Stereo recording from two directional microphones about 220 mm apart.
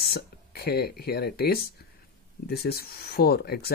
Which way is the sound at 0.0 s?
45° left (ahead or behind).